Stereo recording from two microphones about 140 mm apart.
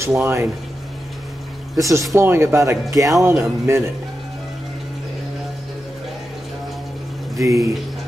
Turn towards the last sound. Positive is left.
turn(degrees=-25)  # may be behind; listen again after turning